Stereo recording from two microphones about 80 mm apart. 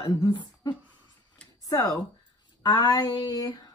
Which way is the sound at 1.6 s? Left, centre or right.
Left.